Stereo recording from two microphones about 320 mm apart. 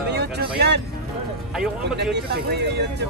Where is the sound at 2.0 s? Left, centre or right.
Right.